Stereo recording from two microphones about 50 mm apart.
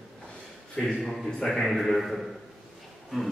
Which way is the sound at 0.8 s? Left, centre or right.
Centre.